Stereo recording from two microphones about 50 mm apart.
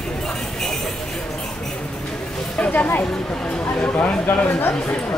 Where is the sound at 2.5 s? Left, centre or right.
Left.